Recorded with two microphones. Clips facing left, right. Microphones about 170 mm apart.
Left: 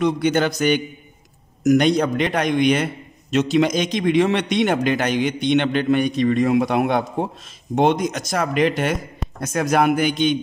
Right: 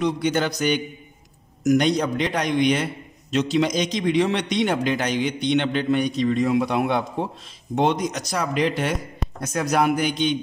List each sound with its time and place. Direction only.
0.0 s a man's voice: 60° left (ahead or behind)